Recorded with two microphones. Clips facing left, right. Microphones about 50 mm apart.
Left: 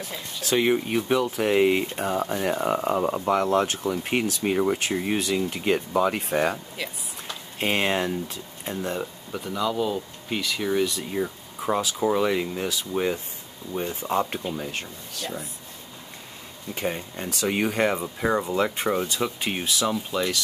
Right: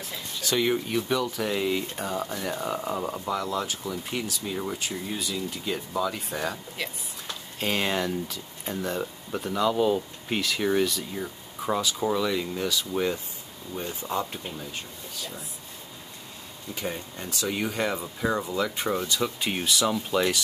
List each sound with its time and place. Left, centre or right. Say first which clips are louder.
0.5 s speech: left 3 dB; left
3.3 s speech: left 8 dB; left
8.6 s speech: left 1 dB; centre
9.3 s speech: right 2 dB; centre
11.0 s speech: left 6 dB; left
11.2 s speech: left 2 dB; centre
12.2 s speech: left 3 dB; left
14.7 s speech: left 4 dB; left
16.7 s speech: left 4 dB; left
17.3 s speech: left 4 dB; left
17.9 s speech: left 3 dB; left
19.5 s speech: even; centre